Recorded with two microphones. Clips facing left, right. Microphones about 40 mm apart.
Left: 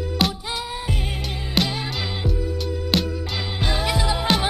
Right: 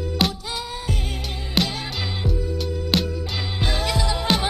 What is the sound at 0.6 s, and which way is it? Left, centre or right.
Music, centre.